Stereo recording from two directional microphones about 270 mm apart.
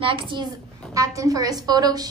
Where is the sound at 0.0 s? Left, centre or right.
Centre.